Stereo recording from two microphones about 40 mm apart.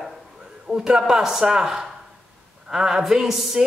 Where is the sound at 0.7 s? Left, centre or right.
Right; by 3.5 s centre.